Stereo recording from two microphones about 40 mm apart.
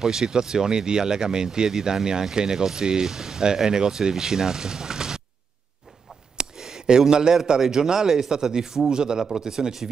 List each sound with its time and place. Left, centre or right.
0.0 s speech: centre
6.3 s a sound: centre
7.4 s speech: centre